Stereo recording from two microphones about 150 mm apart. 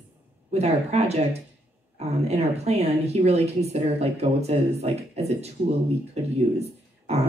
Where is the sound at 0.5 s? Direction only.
45° right (ahead or behind).